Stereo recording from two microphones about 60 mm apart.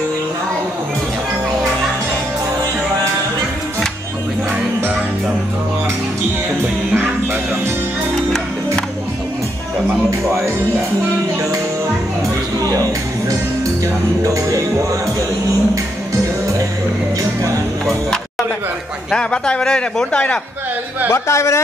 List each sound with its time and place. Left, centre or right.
12.6 s music: right
14.2 s music: right
19.0 s speech: centre
21.1 s a man's voice: left